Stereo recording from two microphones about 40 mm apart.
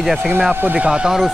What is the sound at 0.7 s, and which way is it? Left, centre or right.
Speech, right.